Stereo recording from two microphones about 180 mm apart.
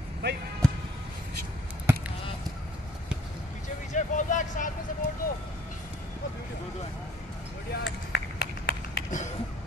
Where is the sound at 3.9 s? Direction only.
45° left (ahead or behind).